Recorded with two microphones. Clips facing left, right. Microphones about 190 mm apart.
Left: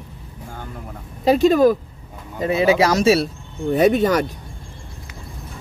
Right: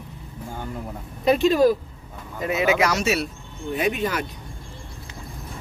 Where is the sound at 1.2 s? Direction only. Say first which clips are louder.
Left 4 dB; 35° left (ahead or behind).